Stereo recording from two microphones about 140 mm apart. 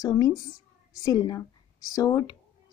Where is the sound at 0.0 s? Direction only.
25° left (ahead or behind).